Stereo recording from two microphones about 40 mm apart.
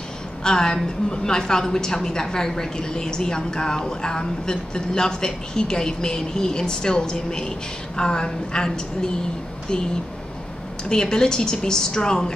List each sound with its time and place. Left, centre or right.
0.4 s a woman's voice: centre
10.9 s a woman's voice: centre